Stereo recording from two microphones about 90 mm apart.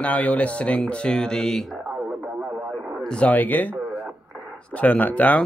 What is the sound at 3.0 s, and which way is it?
Speech, 10° left (ahead or behind).